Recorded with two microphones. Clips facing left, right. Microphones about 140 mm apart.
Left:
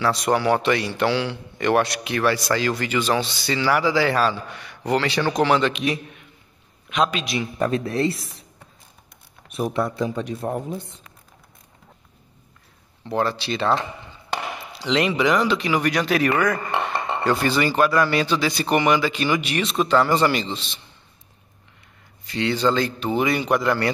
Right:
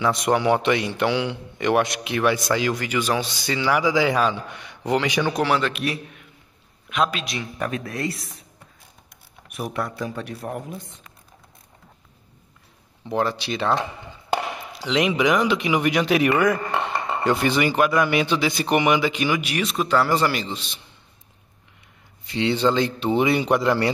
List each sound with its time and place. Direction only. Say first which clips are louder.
0.0 s a man's voice: even; 20° right (ahead or behind); by 7.4 s centre (ahead or behind)
7.5 s a man's voice: left 6 dB; 30° left (ahead or behind)
9.5 s a man's voice: left 5 dB; 25° left (ahead or behind)
13.0 s speech: even; 15° right (ahead or behind)
14.8 s speech: even; 10° right (ahead or behind)
22.3 s speech: right 1 dB; 20° right (ahead or behind)